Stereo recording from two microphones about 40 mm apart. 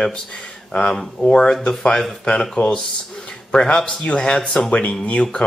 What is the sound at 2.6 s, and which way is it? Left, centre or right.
Speech, left.